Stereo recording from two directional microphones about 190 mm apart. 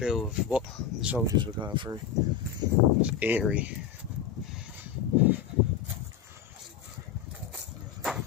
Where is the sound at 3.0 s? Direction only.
10° right (ahead or behind).